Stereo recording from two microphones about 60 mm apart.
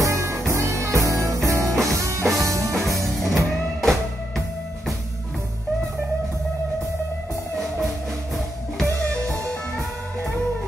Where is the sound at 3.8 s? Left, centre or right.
Centre.